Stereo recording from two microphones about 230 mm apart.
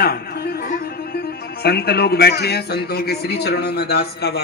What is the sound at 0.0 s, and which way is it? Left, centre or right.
A woman's voice, left.